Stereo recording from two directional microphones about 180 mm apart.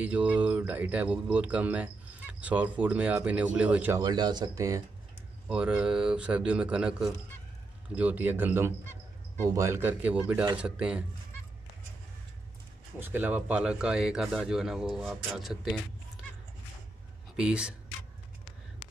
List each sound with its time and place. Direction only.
0.0 s speech: 10° right (ahead or behind)
4.0 s speech: 25° right (ahead or behind)
5.5 s speech: 5° right (ahead or behind)
13.0 s speech: 10° right (ahead or behind)
17.4 s speech: 5° right (ahead or behind)